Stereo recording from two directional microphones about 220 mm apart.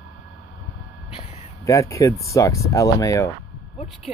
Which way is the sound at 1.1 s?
30° left (ahead or behind).